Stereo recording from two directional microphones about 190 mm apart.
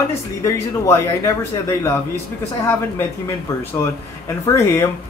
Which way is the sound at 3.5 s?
15° left (ahead or behind).